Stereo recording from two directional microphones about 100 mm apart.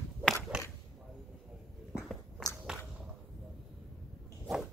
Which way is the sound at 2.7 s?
5° right (ahead or behind).